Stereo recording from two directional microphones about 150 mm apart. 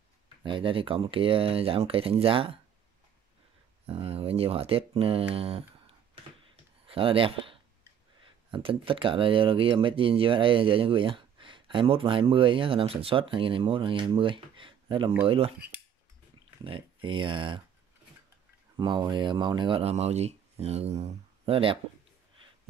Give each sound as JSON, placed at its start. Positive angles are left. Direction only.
{"t": 0.4, "sound": "speech", "side_deg": -35}
{"t": 3.8, "sound": "speech", "side_deg": -40}
{"t": 18.8, "sound": "speech", "side_deg": -30}